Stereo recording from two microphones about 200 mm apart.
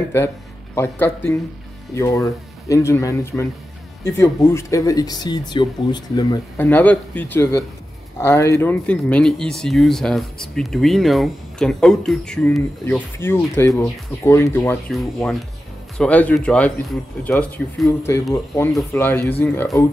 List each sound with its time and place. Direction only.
0.7 s speech: 10° left (ahead or behind)
6.5 s speech: 10° left (ahead or behind)